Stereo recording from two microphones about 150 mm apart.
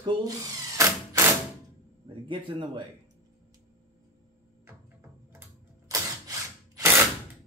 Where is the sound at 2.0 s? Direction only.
35° right (ahead or behind).